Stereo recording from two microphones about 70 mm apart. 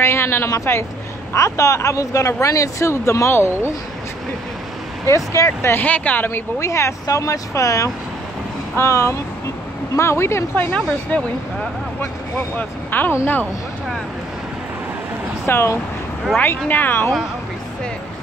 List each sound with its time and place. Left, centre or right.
0.0 s speech: left
1.3 s speech: left
5.0 s speech: left
5.7 s speech: left
6.6 s speech: left; by 11.2 s centre
12.5 s speech: left
15.4 s speech: left
16.3 s speech: left